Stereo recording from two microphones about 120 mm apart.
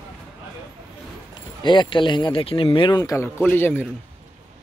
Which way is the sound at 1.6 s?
40° left (ahead or behind).